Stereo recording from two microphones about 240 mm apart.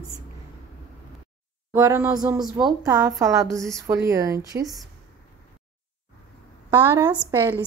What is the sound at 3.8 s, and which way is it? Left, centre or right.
Speech, centre.